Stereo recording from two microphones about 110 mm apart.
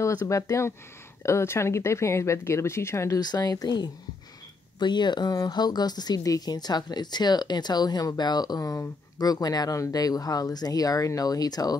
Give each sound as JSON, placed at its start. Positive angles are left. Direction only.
{"t": 0.0, "sound": "speech", "side_deg": 30}
{"t": 3.2, "sound": "speech", "side_deg": 35}